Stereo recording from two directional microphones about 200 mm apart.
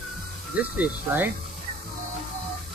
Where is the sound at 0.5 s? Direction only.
5° right (ahead or behind).